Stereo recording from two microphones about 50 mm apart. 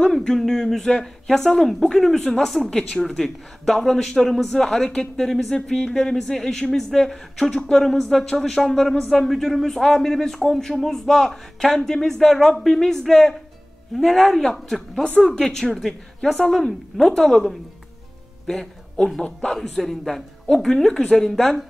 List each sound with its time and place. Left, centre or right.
0.0 s a man's voice: centre
15.0 s speech: centre
15.4 s a man's voice: centre